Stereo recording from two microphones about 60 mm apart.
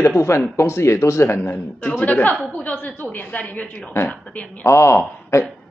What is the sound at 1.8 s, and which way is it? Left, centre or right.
A woman's voice, left.